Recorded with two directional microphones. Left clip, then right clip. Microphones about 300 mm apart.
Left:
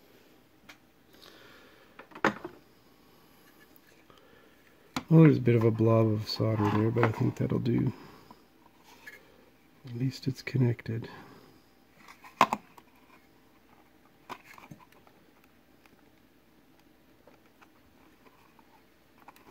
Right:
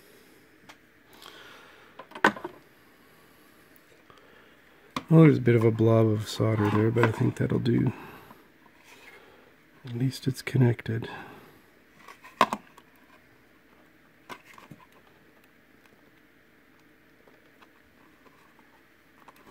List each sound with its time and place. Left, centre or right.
1.2 s a sound: centre
5.1 s speech: centre
9.8 s speech: centre